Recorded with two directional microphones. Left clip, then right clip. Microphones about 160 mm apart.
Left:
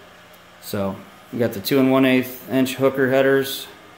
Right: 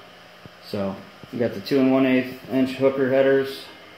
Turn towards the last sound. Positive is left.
turn(degrees=15)  # may be behind; listen again after turning